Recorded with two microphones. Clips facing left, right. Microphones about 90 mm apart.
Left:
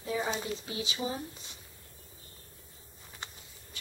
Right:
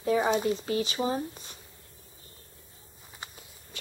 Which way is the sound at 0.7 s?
50° right (ahead or behind).